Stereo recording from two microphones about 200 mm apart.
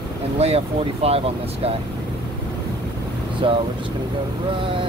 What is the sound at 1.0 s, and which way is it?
Speech, 30° right (ahead or behind).